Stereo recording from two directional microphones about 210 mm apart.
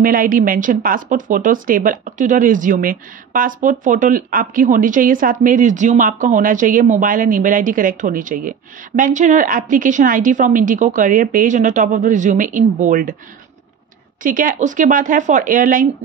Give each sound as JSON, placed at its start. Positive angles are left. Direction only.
{"t": 0.0, "sound": "a woman's voice", "side_deg": -40}
{"t": 14.2, "sound": "a woman's voice", "side_deg": -40}